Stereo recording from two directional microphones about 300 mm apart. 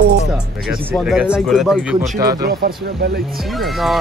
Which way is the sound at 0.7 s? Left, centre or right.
Centre.